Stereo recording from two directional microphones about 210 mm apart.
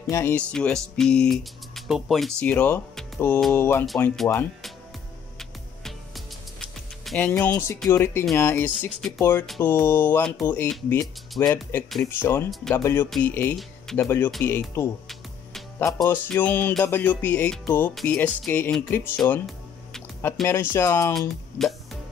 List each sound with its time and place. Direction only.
0.1 s speech: 10° left (ahead or behind)
5.4 s music: centre (ahead or behind)
12.4 s speech: centre (ahead or behind)
12.7 s music: 10° left (ahead or behind)
13.1 s speech: 10° left (ahead or behind)
14.0 s music: 10° left (ahead or behind)
21.1 s speech: centre (ahead or behind)